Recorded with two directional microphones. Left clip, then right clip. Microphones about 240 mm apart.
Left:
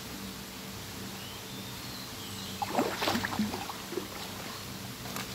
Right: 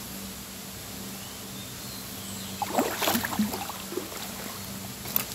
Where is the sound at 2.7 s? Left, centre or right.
Right.